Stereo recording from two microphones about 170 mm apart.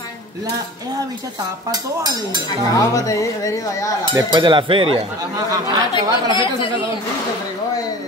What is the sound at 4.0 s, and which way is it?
Speech, 25° right (ahead or behind).